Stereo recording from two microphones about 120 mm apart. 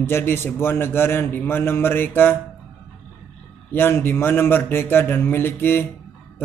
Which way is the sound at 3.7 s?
20° left (ahead or behind).